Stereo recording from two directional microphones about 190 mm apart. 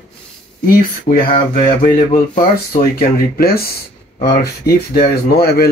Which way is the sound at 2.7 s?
50° left (ahead or behind).